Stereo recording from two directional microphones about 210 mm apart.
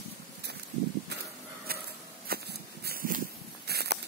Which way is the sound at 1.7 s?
45° right (ahead or behind).